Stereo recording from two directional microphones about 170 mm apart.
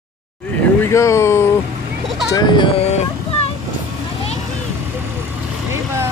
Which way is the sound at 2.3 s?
30° left (ahead or behind).